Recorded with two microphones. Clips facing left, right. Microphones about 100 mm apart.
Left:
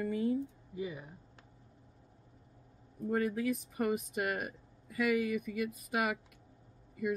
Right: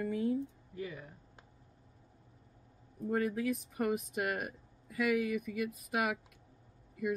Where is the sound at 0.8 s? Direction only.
15° left (ahead or behind).